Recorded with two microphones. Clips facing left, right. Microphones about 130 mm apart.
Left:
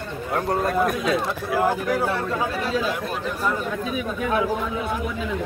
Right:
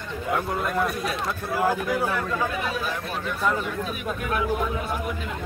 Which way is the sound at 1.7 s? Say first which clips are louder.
Left 2 dB; 30° left (ahead or behind).